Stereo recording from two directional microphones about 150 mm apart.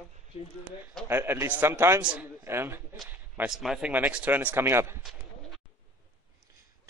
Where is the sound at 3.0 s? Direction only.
10° right (ahead or behind).